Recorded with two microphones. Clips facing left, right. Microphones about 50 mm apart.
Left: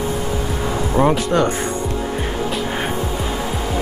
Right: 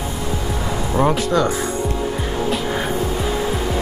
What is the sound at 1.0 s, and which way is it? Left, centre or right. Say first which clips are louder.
Speech: left 2 dB; left.